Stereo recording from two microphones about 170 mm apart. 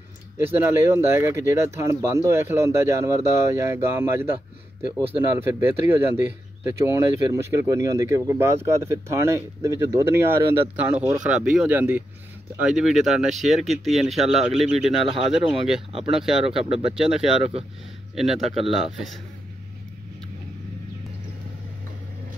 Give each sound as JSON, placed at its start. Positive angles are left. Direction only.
{"t": 0.4, "sound": "speech", "side_deg": -10}
{"t": 5.4, "sound": "speech", "side_deg": -15}
{"t": 17.4, "sound": "speech", "side_deg": -35}
{"t": 18.1, "sound": "speech", "side_deg": 0}